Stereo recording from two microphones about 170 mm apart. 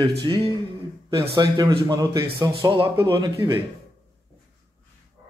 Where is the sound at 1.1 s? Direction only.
35° right (ahead or behind).